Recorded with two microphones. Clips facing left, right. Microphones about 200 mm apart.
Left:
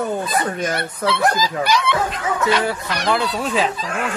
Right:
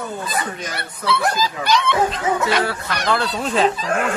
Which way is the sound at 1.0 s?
10° left (ahead or behind).